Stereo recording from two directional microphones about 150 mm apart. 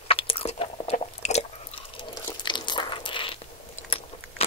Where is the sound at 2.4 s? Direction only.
30° left (ahead or behind).